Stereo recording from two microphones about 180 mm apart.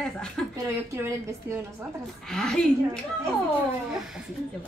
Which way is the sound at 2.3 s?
5° left (ahead or behind).